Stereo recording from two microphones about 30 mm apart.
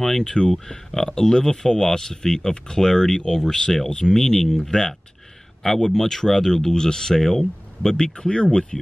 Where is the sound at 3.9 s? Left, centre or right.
Left.